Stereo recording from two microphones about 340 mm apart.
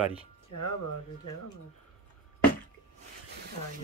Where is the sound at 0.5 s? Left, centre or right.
Left.